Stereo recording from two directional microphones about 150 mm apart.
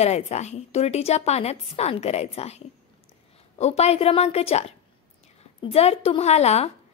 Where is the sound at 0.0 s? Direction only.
45° left (ahead or behind).